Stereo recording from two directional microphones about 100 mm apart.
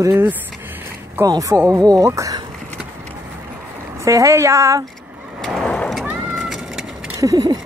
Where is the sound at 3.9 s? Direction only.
30° right (ahead or behind).